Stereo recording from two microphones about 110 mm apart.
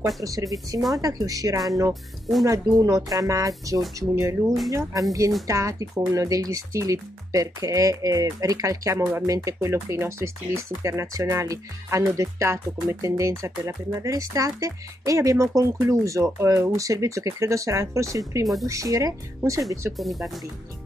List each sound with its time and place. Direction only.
0.2 s speech: 30° right (ahead or behind)
20.0 s speech: centre (ahead or behind)